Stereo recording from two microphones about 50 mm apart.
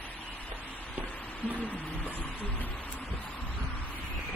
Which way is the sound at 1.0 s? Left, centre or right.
Left.